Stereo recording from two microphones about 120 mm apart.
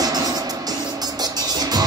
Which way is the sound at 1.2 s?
35° right (ahead or behind).